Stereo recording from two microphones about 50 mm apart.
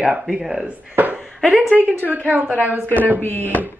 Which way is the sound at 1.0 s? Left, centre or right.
Right.